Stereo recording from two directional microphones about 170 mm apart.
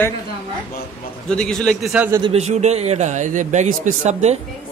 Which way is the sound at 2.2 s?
40° right (ahead or behind).